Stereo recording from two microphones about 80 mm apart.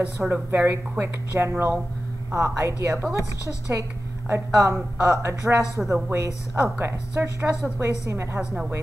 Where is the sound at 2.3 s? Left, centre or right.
Right.